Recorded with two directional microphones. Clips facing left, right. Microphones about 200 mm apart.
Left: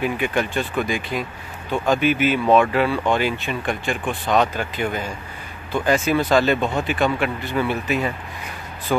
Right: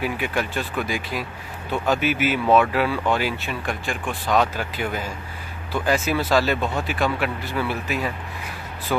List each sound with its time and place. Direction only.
0.0 s speech: 5° right (ahead or behind)